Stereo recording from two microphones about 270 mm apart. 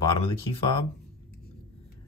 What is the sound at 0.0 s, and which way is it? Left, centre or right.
Speech, centre.